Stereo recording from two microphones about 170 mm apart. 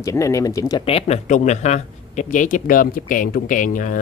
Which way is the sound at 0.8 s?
35° left (ahead or behind).